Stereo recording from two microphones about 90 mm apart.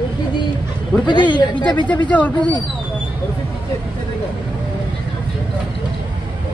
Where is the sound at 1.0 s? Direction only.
60° left (ahead or behind).